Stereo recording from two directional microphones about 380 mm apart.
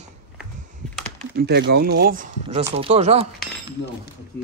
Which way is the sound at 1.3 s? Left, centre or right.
Right.